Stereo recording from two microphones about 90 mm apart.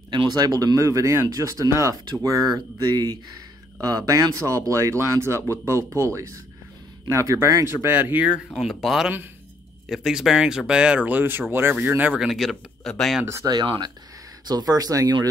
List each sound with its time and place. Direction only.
0.1 s speech: 55° right (ahead or behind); by 8.3 s 20° right (ahead or behind)
8.5 s speech: 5° right (ahead or behind); by 12.2 s 20° right (ahead or behind)
12.2 s speech: centre (ahead or behind)
13.2 s speech: 30° right (ahead or behind)
14.5 s speech: 45° right (ahead or behind)